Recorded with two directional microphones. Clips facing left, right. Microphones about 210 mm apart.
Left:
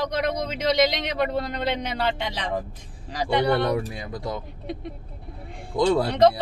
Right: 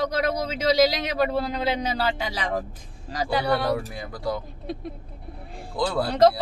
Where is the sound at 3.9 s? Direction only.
20° left (ahead or behind).